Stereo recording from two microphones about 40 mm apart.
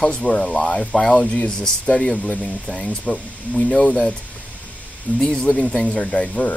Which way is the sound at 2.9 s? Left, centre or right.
Left.